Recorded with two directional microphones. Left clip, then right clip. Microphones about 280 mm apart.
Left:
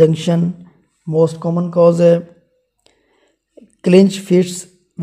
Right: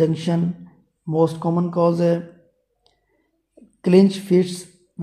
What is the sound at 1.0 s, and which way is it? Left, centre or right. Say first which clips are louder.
A man's voice: left 4 dB; left.